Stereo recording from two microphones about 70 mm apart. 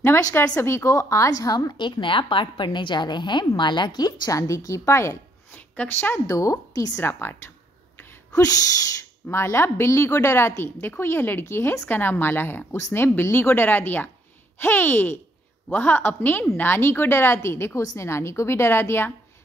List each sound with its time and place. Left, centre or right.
0.4 s a woman's voice: left
2.4 s a woman's voice: left
4.4 s a woman's voice: left
5.5 s a sound: left
6.1 s a woman's voice: left
7.0 s a woman's voice: left
8.3 s a sound: left
9.3 s a woman's voice: left